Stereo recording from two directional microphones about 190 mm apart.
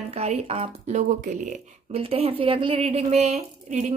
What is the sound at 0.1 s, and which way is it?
Speech, 35° right (ahead or behind).